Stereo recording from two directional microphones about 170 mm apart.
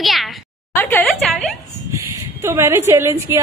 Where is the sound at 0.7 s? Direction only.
10° left (ahead or behind).